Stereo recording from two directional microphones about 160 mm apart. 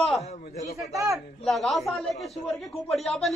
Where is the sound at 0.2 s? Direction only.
40° left (ahead or behind).